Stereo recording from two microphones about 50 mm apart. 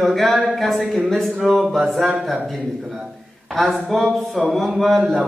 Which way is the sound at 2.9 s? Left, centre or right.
Centre.